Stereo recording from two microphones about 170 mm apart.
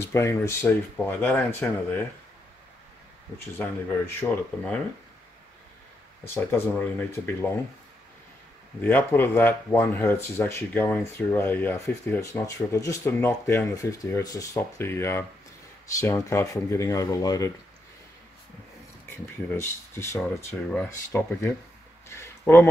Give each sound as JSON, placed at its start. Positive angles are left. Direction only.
{"t": 0.0, "sound": "speech", "side_deg": 15}
{"t": 3.3, "sound": "speech", "side_deg": 15}
{"t": 6.2, "sound": "speech", "side_deg": 15}
{"t": 8.8, "sound": "speech", "side_deg": 10}
{"t": 19.0, "sound": "speech", "side_deg": 15}
{"t": 22.1, "sound": "a sound", "side_deg": 15}